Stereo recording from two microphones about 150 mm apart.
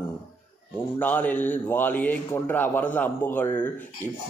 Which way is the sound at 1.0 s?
10° left (ahead or behind).